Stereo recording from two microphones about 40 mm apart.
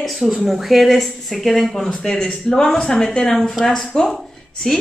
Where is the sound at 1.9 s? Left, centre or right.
Centre.